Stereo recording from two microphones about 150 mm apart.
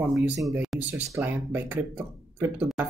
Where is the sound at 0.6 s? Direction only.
5° right (ahead or behind).